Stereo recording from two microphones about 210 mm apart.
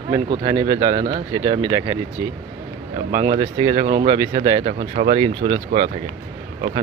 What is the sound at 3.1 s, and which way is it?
Speech, 20° right (ahead or behind).